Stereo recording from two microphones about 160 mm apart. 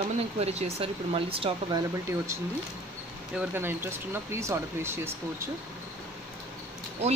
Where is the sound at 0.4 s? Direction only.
40° right (ahead or behind).